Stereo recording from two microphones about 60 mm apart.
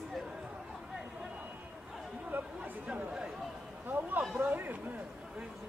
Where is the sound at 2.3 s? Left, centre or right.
Right.